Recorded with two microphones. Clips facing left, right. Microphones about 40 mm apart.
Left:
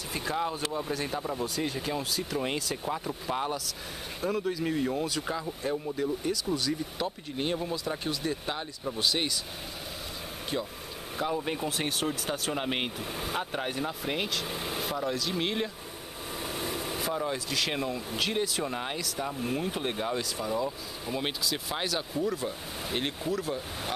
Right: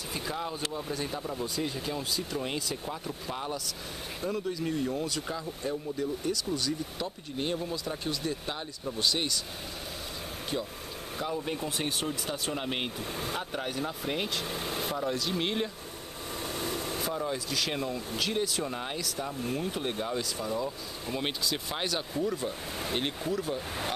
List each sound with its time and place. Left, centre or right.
1.0 s speech: centre
4.2 s speech: centre
11.1 s speech: centre